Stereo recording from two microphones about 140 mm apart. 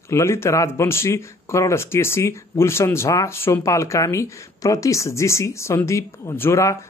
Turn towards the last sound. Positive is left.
turn(degrees=20)  # may be behind; listen again after turning